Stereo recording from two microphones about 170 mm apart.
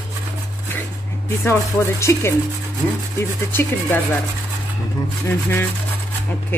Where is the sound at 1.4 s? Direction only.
15° left (ahead or behind).